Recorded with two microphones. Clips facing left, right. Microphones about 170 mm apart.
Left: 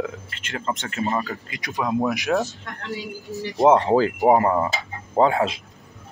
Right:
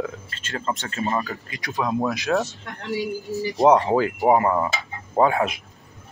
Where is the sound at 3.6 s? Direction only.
25° left (ahead or behind).